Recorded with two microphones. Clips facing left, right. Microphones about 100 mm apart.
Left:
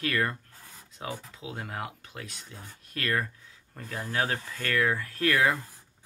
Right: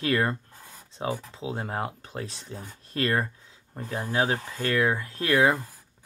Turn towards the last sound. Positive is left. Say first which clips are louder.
# right 3 dB
turn(degrees=-25)  # may be behind; listen again after turning